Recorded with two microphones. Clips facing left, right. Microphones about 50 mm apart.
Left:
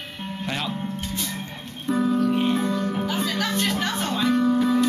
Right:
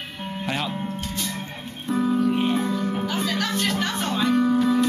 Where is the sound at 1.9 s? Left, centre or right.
Centre.